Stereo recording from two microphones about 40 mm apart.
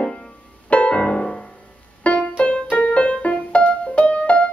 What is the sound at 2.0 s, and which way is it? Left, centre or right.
Music, left.